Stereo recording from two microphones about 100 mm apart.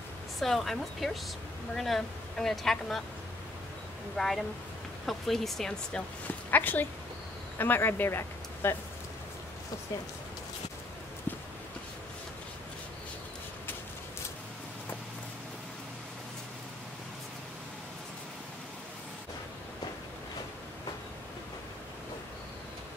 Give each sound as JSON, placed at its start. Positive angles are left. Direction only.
{"t": 0.4, "sound": "speech", "side_deg": 0}
{"t": 4.2, "sound": "speech", "side_deg": 0}
{"t": 6.5, "sound": "speech", "side_deg": 20}